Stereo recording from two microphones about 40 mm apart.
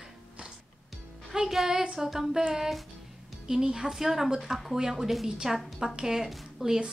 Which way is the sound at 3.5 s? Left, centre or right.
Centre.